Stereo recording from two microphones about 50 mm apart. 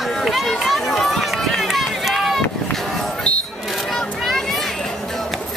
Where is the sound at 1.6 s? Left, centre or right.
Centre.